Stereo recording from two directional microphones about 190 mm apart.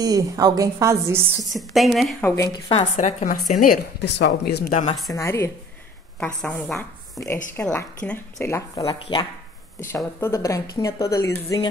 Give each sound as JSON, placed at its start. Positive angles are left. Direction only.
{"t": 0.0, "sound": "a woman's voice", "side_deg": -20}
{"t": 1.5, "sound": "a woman's voice", "side_deg": 0}
{"t": 2.2, "sound": "a woman's voice", "side_deg": 15}
{"t": 2.7, "sound": "a woman's voice", "side_deg": 35}
{"t": 5.1, "sound": "a woman's voice", "side_deg": 15}
{"t": 8.8, "sound": "speech", "side_deg": 25}
{"t": 9.8, "sound": "a woman's voice", "side_deg": 15}